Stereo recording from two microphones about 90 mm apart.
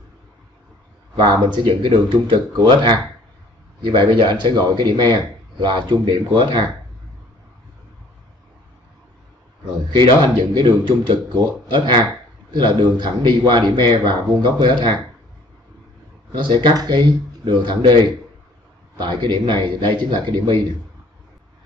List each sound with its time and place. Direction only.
1.1 s a man's voice: 60° right (ahead or behind)
9.9 s a man's voice: 50° right (ahead or behind)
16.6 s a man's voice: 50° right (ahead or behind)
18.9 s a man's voice: 55° right (ahead or behind)